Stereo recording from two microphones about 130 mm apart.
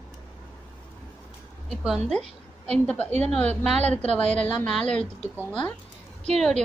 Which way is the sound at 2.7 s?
10° left (ahead or behind).